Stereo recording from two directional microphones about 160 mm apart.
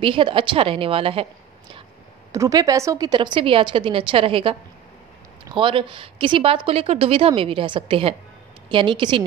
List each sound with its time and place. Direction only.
0.0 s speech: 30° right (ahead or behind)
2.3 s speech: 20° right (ahead or behind)